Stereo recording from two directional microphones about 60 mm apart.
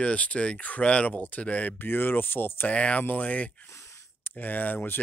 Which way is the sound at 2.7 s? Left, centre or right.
Left.